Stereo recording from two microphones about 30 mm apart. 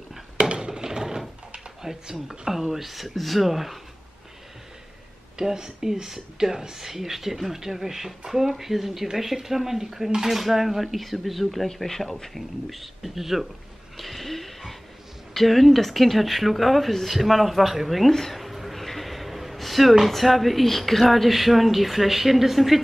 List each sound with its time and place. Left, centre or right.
0.4 s a sound: right
0.8 s mechanisms: centre
1.8 s speech: centre
5.4 s speech: centre
13.9 s a sound: centre
15.3 s speech: centre
18.1 s speech: centre
18.4 s a sound: centre
20.1 s speech: centre